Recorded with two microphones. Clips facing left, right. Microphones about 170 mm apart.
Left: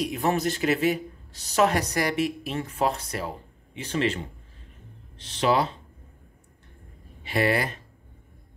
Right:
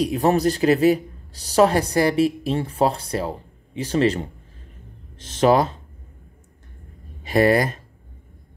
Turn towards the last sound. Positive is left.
turn(degrees=-40)  # may be behind; listen again after turning